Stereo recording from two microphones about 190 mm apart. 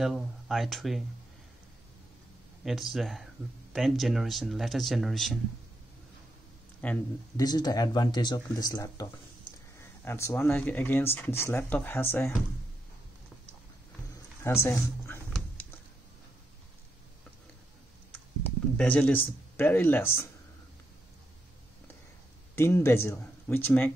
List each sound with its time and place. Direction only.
0.0 s speech: centre (ahead or behind)
2.6 s speech: centre (ahead or behind)
6.8 s speech: 10° left (ahead or behind)
7.3 s speech: 20° left (ahead or behind)
14.4 s speech: 15° left (ahead or behind)
18.8 s speech: 5° left (ahead or behind)
22.6 s speech: 10° left (ahead or behind)